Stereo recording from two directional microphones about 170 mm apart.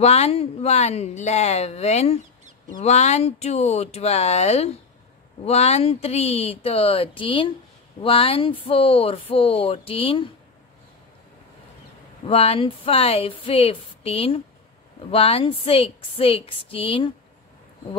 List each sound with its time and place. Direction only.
0.0 s speech: 40° left (ahead or behind)
12.3 s speech: 35° left (ahead or behind)